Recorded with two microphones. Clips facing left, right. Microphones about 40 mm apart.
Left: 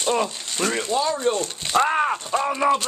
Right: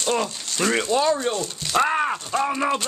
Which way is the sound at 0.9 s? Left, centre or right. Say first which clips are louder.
Right 3 dB; right.